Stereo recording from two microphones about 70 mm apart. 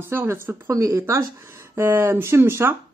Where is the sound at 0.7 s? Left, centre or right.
Right.